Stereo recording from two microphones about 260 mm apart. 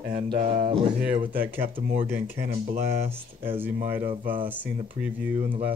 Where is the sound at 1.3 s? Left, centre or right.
Centre.